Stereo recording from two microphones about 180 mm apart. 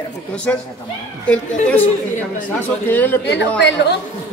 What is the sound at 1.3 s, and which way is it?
Speech, 5° left (ahead or behind).